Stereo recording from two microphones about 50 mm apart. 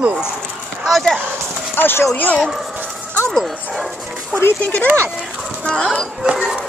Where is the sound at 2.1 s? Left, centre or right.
Left.